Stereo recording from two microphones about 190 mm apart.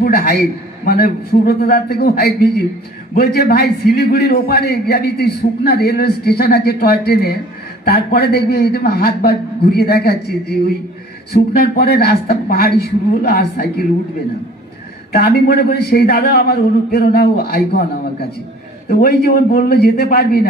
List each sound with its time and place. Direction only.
0.0 s a sound: 55° left (ahead or behind)
0.8 s a man's voice: 55° left (ahead or behind)
15.1 s a man's voice: 55° left (ahead or behind)